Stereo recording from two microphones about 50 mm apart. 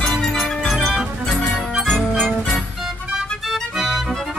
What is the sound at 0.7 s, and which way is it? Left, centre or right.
Music, centre.